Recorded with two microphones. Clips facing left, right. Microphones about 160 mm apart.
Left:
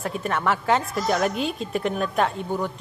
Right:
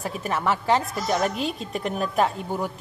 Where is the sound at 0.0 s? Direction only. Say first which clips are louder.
Left 1 dB; centre (ahead or behind).